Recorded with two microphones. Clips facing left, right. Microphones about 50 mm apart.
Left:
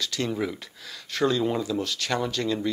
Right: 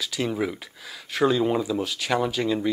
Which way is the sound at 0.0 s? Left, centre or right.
Centre.